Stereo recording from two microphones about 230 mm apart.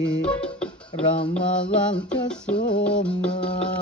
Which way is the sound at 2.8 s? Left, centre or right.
Centre.